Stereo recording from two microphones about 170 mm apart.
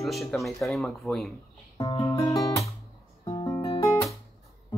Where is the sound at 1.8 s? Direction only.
25° left (ahead or behind).